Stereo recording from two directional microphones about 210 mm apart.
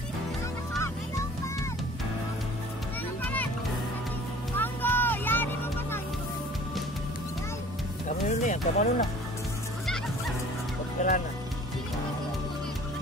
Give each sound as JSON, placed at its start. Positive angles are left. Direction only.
{"t": 4.6, "sound": "music", "side_deg": 10}
{"t": 8.1, "sound": "speech", "side_deg": 35}
{"t": 11.0, "sound": "speech", "side_deg": 35}